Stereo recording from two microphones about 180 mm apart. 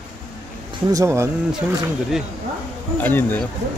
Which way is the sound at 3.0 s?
10° left (ahead or behind).